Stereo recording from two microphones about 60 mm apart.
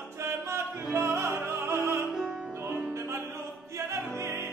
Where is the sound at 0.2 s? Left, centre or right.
Right.